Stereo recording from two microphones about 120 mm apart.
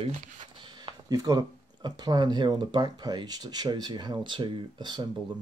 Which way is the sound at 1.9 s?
35° right (ahead or behind).